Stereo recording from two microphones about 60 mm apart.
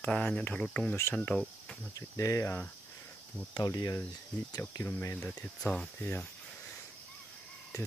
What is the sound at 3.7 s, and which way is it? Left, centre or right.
Cricket, left.